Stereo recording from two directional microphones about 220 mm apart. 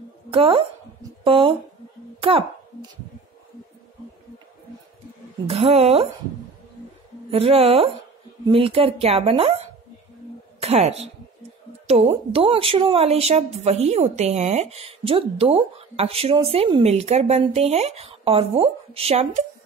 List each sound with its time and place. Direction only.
0.3 s speech: 25° right (ahead or behind)
2.1 s a sound: 25° right (ahead or behind)
5.5 s speech: 25° right (ahead or behind)
7.2 s speech: 25° right (ahead or behind)
10.6 s a woman's voice: 30° right (ahead or behind)